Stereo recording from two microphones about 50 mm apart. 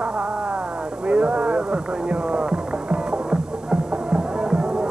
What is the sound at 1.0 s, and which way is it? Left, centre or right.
Music, right.